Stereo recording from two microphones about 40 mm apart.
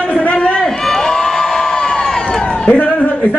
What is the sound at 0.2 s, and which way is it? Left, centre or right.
Run, left.